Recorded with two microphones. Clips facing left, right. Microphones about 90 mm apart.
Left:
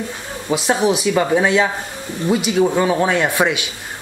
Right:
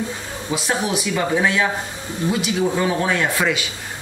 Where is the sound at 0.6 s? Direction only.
20° left (ahead or behind).